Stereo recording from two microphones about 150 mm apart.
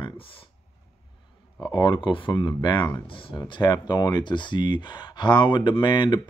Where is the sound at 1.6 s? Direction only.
30° left (ahead or behind).